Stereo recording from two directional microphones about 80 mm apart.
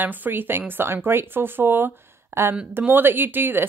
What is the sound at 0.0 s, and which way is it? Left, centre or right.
Speech, right.